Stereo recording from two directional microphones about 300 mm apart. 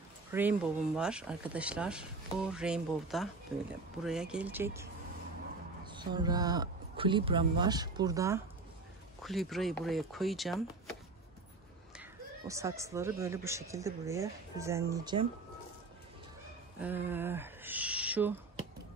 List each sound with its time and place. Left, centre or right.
0.3 s speech: centre
5.9 s speech: centre
9.2 s speech: centre
12.0 s speech: centre
16.8 s owl: centre